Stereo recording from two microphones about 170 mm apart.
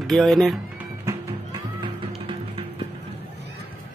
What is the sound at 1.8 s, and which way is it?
Music, 30° right (ahead or behind).